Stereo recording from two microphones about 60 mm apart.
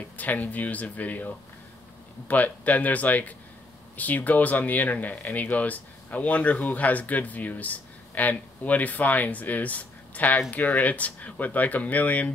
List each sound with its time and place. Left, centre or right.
0.0 s speech: left